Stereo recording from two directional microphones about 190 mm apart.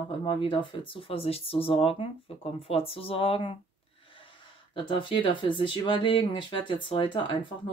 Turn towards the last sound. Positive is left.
turn(degrees=25)  # may be behind; listen again after turning